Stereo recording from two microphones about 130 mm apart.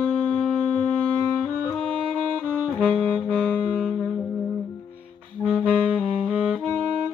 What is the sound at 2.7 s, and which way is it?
Saxophone, 10° left (ahead or behind).